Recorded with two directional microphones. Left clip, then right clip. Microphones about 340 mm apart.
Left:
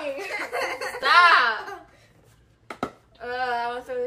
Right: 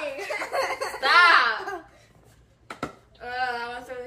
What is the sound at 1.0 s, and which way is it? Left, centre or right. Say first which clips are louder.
Speech: left 1 dB; centre.